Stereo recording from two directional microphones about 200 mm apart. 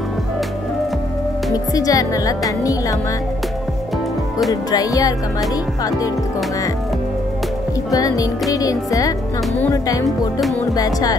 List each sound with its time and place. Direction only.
1.5 s speech: 20° left (ahead or behind)
4.5 s speech: 20° left (ahead or behind)
7.9 s speech: 15° left (ahead or behind)